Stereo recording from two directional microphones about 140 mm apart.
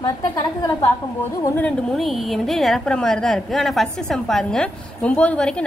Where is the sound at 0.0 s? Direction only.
30° left (ahead or behind).